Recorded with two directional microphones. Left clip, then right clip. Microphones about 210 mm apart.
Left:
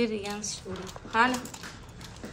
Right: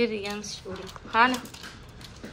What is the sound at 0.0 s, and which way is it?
Speech, 5° left (ahead or behind).